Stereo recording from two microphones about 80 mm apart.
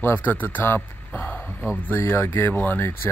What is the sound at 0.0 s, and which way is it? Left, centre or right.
Speech, left.